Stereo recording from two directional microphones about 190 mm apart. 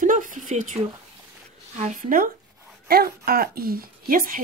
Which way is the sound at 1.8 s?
40° right (ahead or behind).